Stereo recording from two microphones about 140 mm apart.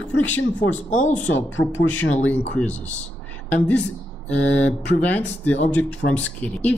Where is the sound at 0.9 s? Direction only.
60° left (ahead or behind).